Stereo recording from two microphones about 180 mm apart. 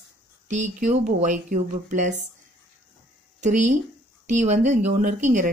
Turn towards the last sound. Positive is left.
turn(degrees=-45)  # may be behind; listen again after turning